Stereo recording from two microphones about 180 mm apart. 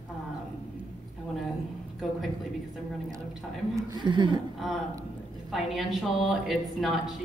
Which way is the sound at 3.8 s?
25° right (ahead or behind).